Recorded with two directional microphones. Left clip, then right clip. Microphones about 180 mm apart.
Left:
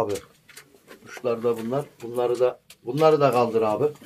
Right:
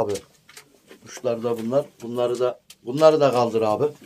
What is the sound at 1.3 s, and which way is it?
Speech, 15° right (ahead or behind).